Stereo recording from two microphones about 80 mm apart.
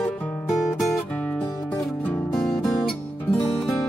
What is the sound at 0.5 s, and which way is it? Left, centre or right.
Music, centre.